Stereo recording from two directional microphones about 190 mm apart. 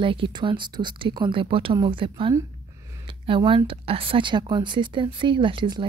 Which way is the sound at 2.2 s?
15° right (ahead or behind).